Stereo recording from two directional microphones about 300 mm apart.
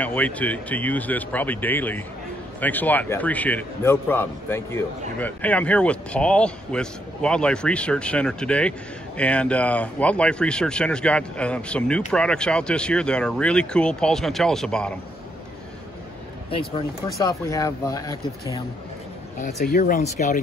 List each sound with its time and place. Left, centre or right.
0.0 s a man's voice: centre
17.2 s speech: centre
19.4 s speech: left